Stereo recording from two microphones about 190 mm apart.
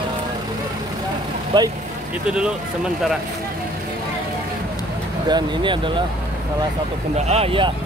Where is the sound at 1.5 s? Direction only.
25° right (ahead or behind).